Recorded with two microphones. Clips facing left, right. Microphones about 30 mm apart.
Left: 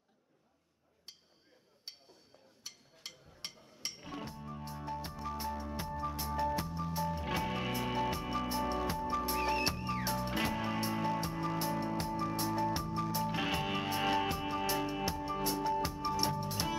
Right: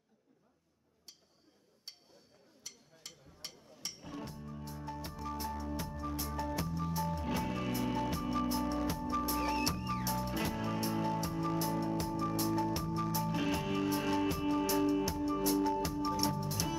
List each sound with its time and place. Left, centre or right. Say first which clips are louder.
2.6 s a sound: left 1 dB; centre
3.0 s music: left 3 dB; left
9.6 s music: left 1 dB; left